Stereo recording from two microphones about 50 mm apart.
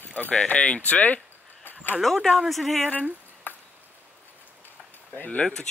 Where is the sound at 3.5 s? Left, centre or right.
Left.